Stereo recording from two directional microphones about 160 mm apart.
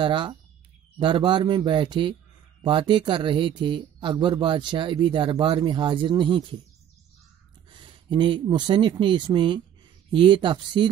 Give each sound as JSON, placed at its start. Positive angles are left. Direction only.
{"t": 0.0, "sound": "speech", "side_deg": -30}
{"t": 7.7, "sound": "speech", "side_deg": -30}